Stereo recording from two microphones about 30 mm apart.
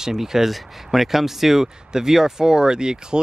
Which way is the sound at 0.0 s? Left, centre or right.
Centre.